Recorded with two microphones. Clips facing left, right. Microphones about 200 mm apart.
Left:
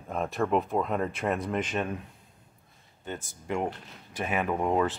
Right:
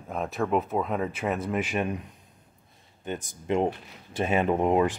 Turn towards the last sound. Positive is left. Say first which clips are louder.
# right 4 dB
turn(degrees=-20)  # may be behind; listen again after turning